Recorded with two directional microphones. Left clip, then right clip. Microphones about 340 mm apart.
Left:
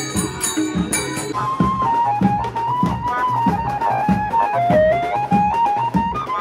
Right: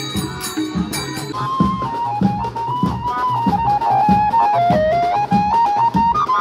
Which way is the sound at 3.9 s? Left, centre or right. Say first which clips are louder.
Right 6 dB; right.